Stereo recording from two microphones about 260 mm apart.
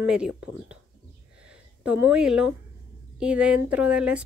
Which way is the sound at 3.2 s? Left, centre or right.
Centre.